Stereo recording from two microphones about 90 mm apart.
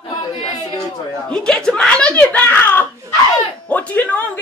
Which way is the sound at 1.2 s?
5° left (ahead or behind).